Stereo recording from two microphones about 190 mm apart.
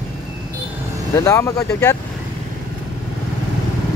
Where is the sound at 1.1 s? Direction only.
15° left (ahead or behind).